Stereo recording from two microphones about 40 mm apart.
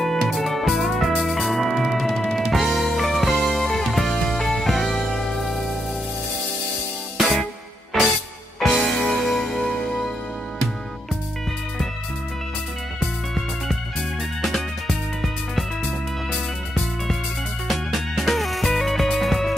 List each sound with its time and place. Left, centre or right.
0.2 s music: centre
7.2 s music: centre
9.7 s music: centre
13.0 s music: centre
17.6 s music: centre